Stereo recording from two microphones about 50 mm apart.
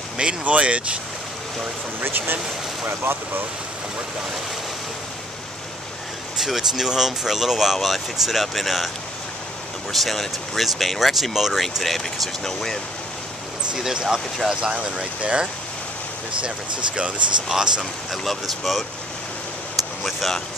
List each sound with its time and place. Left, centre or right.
0.2 s speech: right
2.0 s speech: right
6.4 s speech: centre
9.9 s speech: centre
13.7 s speech: centre
18.1 s speech: centre
20.0 s speech: centre